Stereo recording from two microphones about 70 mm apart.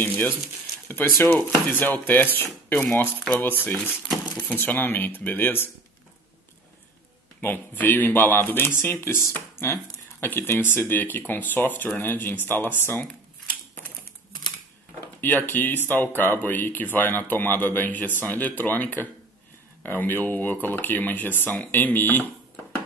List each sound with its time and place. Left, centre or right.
0.0 s speech: left
7.4 s speech: left
15.1 s speech: left